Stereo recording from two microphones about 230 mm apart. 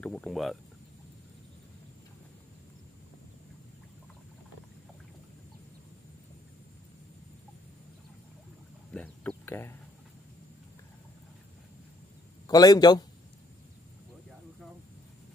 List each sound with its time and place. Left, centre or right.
0.0 s speech: centre
8.9 s a sound: centre
12.4 s a man's voice: centre